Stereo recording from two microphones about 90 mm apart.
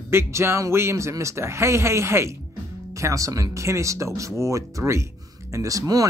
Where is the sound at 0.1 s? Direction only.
30° right (ahead or behind).